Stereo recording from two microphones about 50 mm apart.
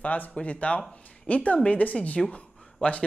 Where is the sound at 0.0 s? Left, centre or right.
Left.